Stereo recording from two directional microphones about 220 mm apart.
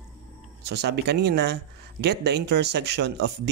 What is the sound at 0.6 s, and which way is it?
Speech, 50° right (ahead or behind).